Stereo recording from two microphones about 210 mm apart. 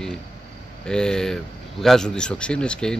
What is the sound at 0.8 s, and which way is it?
A man's voice, 5° left (ahead or behind).